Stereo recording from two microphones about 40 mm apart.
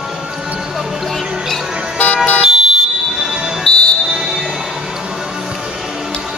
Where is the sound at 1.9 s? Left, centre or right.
Left.